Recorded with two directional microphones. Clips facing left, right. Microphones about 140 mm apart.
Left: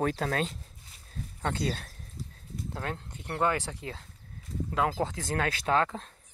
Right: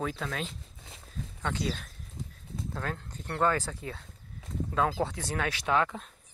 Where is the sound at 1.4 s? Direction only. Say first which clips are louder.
Left 2 dB; 40° left (ahead or behind).